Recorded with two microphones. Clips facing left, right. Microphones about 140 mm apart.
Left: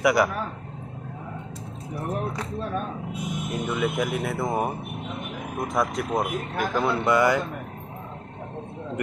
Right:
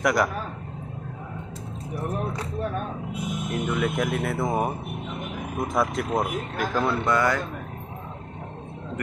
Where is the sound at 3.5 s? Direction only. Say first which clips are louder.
Even; centre (ahead or behind).